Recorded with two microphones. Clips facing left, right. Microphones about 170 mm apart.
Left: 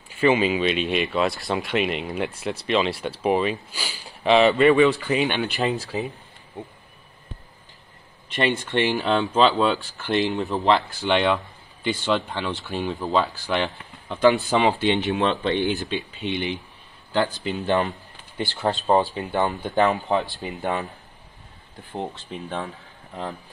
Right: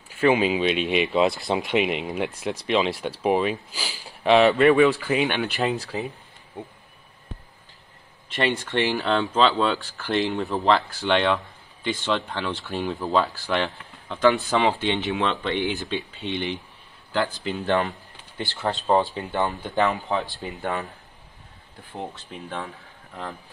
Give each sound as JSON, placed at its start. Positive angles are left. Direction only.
{"t": 0.3, "sound": "speech", "side_deg": -10}
{"t": 2.7, "sound": "speech", "side_deg": 0}
{"t": 8.4, "sound": "speech", "side_deg": 0}
{"t": 15.5, "sound": "speech", "side_deg": -15}
{"t": 16.2, "sound": "speech", "side_deg": 10}
{"t": 17.1, "sound": "speech", "side_deg": 20}